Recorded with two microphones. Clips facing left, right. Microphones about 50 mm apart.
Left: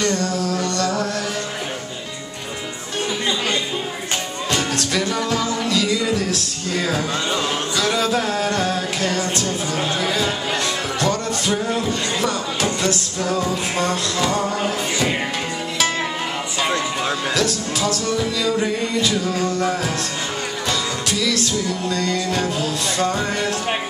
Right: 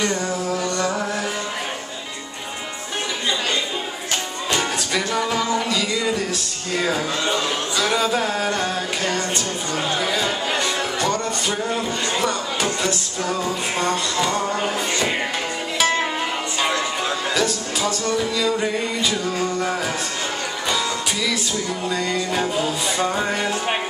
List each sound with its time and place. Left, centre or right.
0.0 s music: centre
4.5 s music: centre
17.0 s music: centre